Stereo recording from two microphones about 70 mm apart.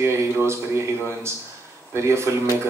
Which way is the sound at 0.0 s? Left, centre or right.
Right.